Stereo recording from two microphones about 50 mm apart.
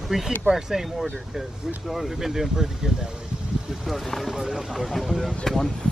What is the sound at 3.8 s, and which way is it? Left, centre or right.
Speech, centre.